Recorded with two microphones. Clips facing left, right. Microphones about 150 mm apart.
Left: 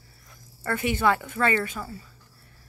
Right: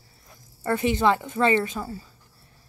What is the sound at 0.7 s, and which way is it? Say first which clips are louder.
Speech: right 2 dB; 20° right (ahead or behind).